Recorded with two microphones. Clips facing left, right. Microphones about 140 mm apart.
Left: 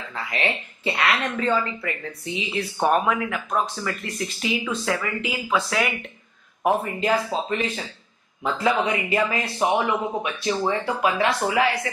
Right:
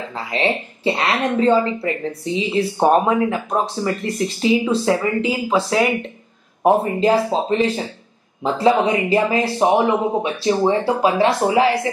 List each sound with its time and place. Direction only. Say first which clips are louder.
0.1 s speech: right 6 dB; 30° right (ahead or behind)